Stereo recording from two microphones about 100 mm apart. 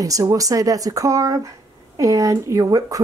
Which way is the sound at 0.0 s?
35° right (ahead or behind).